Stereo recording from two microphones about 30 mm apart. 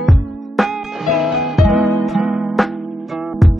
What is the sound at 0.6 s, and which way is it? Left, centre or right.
Music, centre.